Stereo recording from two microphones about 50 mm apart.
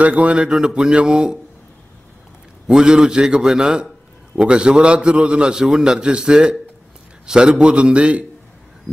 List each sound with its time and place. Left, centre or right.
0.0 s a man's voice: right
2.7 s a man's voice: centre